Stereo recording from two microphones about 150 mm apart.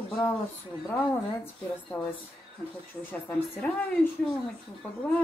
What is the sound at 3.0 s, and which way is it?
A woman's voice, 10° left (ahead or behind).